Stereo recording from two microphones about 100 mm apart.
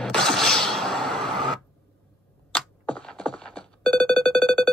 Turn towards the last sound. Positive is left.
turn(degrees=10)  # may be behind; listen again after turning